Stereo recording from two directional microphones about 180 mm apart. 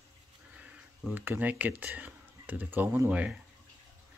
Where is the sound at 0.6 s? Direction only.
10° right (ahead or behind).